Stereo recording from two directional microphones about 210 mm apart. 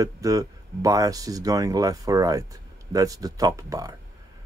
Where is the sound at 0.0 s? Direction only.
15° right (ahead or behind).